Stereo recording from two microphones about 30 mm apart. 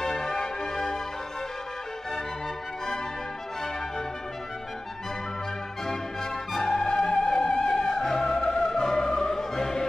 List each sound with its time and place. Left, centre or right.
0.0 s music: centre
6.5 s music: centre